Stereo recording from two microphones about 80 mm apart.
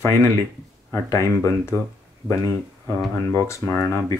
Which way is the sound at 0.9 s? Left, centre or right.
Left.